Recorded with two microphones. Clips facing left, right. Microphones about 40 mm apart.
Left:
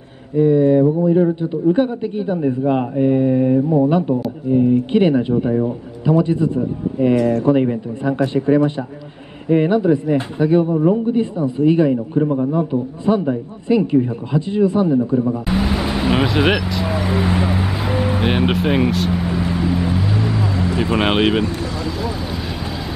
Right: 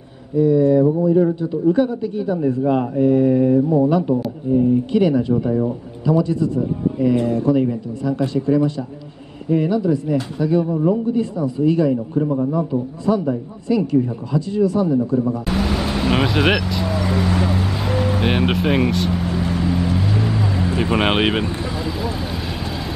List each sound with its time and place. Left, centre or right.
0.4 s a man's voice: left; by 4.2 s centre
4.5 s a man's voice: left
7.2 s speech: left
7.4 s a man's voice: left; by 16.8 s centre
16.8 s vehicle: centre
18.2 s vehicle: centre
20.6 s speech: centre